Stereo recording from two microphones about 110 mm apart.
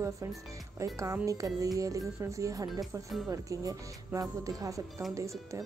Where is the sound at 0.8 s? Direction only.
30° right (ahead or behind).